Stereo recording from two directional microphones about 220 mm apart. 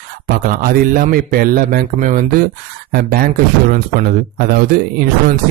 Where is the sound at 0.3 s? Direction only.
40° right (ahead or behind).